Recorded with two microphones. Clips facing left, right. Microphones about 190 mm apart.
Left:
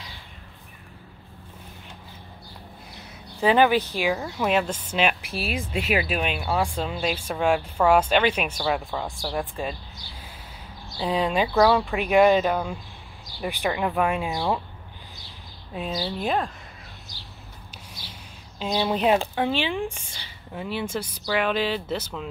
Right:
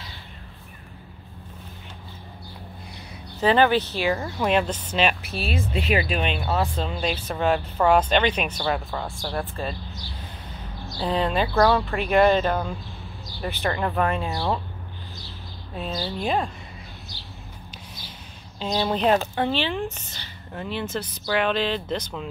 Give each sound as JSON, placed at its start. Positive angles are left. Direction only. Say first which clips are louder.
{"t": 3.3, "sound": "speech", "louder": "even", "side_deg": 10}
{"t": 11.0, "sound": "speech", "louder": "even", "side_deg": 10}
{"t": 15.7, "sound": "speech", "louder": "left 1 dB", "side_deg": 5}
{"t": 17.1, "sound": "a sound", "louder": "right 2 dB", "side_deg": -25}
{"t": 18.6, "sound": "speech", "louder": "even", "side_deg": 5}